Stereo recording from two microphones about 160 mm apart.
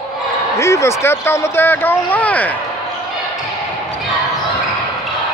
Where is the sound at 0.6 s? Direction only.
15° left (ahead or behind).